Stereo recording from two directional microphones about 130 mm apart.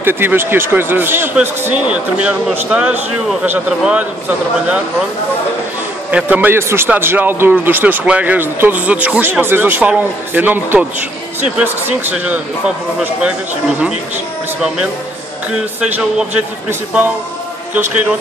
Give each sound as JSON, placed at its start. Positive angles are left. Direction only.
{"t": 0.0, "sound": "a man's voice", "side_deg": -15}
{"t": 6.1, "sound": "a man's voice", "side_deg": -10}
{"t": 15.8, "sound": "a man's voice", "side_deg": -10}